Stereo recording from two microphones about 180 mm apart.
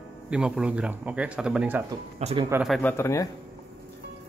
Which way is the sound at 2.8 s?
10° left (ahead or behind).